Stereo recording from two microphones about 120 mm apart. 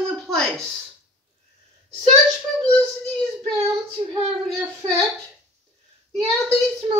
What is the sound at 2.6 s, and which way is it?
Speech, 10° left (ahead or behind).